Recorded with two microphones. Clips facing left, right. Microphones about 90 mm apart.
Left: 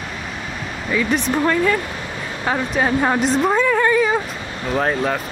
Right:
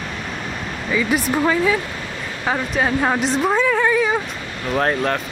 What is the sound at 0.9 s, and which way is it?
Speech, 5° right (ahead or behind).